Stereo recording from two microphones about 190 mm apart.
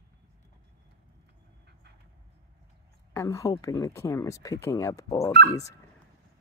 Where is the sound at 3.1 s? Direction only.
15° left (ahead or behind).